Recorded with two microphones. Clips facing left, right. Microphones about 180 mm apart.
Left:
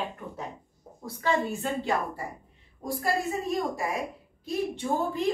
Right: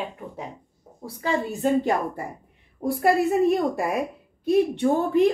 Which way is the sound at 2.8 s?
60° right (ahead or behind).